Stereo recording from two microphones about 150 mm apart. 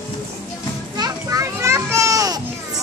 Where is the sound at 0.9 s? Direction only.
25° right (ahead or behind).